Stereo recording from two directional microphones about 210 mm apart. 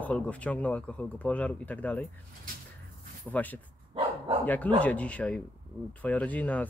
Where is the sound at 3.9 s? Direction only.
25° right (ahead or behind).